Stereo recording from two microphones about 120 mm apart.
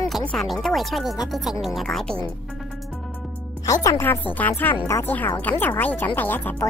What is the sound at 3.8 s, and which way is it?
Speech, 20° left (ahead or behind).